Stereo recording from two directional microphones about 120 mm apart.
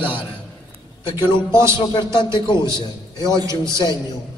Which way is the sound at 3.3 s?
25° right (ahead or behind).